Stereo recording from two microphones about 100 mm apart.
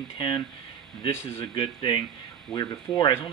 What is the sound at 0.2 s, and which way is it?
Speech, 50° left (ahead or behind).